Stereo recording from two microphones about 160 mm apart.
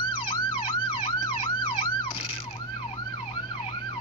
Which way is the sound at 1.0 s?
35° left (ahead or behind).